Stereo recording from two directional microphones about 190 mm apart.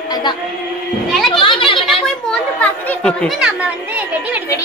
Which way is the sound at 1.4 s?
25° left (ahead or behind).